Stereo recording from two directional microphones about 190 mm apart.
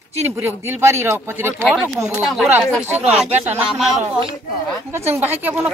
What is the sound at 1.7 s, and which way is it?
Speech, centre (ahead or behind).